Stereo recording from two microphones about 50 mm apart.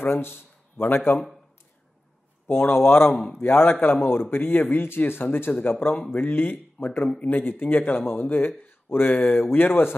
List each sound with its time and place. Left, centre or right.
0.0 s speech: left
2.4 s speech: left
7.2 s speech: left